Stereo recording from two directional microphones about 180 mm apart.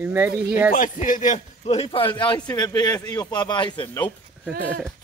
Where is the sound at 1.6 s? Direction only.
30° left (ahead or behind).